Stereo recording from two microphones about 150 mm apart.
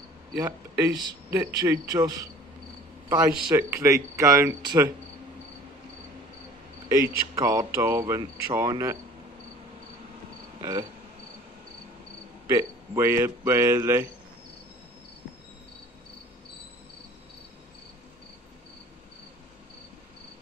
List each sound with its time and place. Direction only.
1.3 s speech: 20° right (ahead or behind)
6.9 s speech: 20° right (ahead or behind)
10.6 s cricket: 20° right (ahead or behind)
12.4 s speech: 20° right (ahead or behind)